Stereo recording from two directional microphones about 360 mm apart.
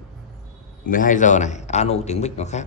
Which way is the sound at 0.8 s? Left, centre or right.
Left.